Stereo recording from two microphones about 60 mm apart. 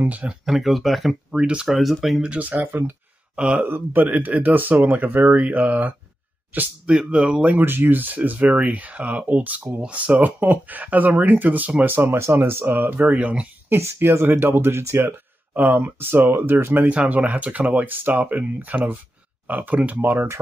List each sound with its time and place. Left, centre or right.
0.0 s speech: right
0.3 s speech: centre
1.3 s speech: centre
1.8 s speech: centre
2.2 s speech: right
3.3 s speech: centre
3.6 s speech: right; by 7.5 s centre
7.5 s speech: right
11.9 s speech: right
13.1 s speech: centre
13.7 s speech: right
15.0 s speech: right
16.8 s speech: right